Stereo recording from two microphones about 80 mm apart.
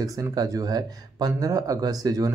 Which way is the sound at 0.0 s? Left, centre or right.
Right.